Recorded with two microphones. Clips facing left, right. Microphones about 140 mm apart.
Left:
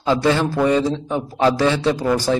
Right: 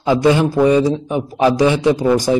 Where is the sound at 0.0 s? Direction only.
15° right (ahead or behind).